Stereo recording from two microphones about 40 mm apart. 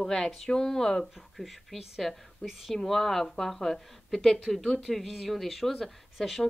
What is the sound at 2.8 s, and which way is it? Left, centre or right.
A woman's voice, centre.